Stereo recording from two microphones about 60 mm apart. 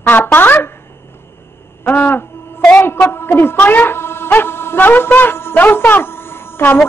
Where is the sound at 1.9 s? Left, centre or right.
Left.